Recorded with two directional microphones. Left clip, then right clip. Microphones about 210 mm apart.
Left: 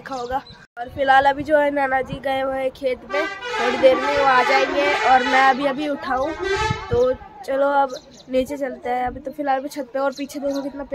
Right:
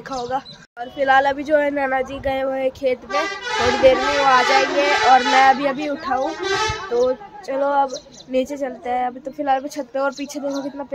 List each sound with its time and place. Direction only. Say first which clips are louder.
0.2 s speech: right 1 dB; centre (ahead or behind)
6.2 s speech: right 1 dB; 30° right (ahead or behind)
7.1 s speech: even; 10° left (ahead or behind)
8.5 s speech: right 1 dB; centre (ahead or behind)